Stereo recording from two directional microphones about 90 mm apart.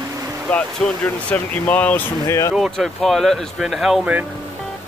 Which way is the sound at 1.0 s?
15° left (ahead or behind).